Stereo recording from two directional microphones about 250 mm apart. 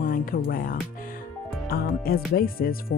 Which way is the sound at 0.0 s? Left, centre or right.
Left.